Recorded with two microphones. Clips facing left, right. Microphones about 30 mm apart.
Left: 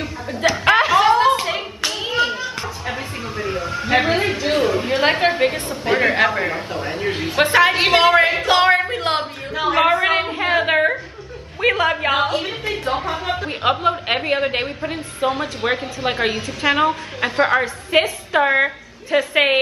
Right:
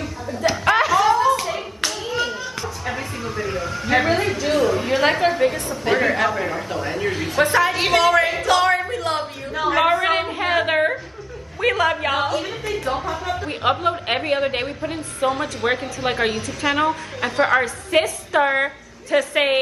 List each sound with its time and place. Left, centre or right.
0.4 s chuckle: left
0.9 s clapping: left
2.0 s children playing: left
2.9 s a sound: centre
5.1 s a man's voice: left
7.9 s a sound: left
9.6 s a sound: centre
11.6 s a woman's voice: centre
12.1 s a man's voice: left
13.5 s a woman's voice: centre